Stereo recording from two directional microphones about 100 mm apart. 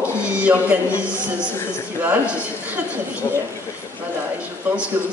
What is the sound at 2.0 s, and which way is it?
Speech, 20° right (ahead or behind).